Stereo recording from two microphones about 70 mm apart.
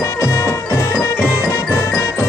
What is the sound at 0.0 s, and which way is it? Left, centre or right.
Music, left.